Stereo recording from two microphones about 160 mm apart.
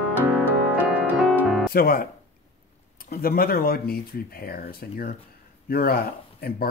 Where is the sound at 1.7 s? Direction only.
65° left (ahead or behind).